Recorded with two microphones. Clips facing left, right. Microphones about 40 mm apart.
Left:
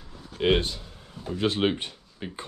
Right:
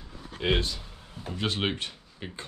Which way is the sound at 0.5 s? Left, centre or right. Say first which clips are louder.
Left 4 dB; left.